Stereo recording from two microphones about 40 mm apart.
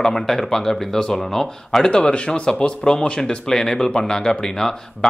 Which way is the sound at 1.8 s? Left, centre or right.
Left.